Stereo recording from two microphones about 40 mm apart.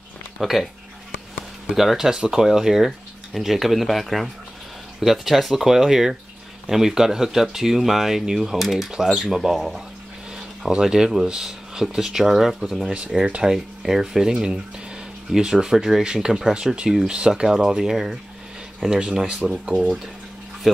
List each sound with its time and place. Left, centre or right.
0.4 s speech: centre
1.7 s speech: centre
2.0 s speech: centre
19.5 s speech: centre